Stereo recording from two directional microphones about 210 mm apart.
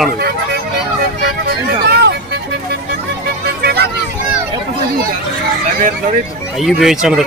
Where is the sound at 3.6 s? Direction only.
50° right (ahead or behind).